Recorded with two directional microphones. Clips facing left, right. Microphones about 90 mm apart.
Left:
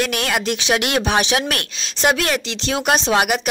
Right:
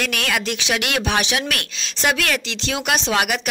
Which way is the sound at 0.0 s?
30° left (ahead or behind).